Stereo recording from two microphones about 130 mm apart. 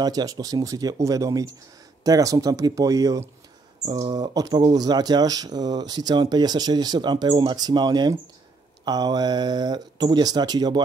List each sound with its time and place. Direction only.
0.0 s speech: 30° right (ahead or behind)